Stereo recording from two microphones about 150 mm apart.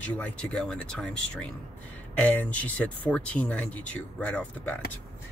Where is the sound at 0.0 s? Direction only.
10° left (ahead or behind).